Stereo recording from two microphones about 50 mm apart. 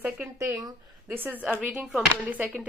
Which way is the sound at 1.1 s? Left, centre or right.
Right.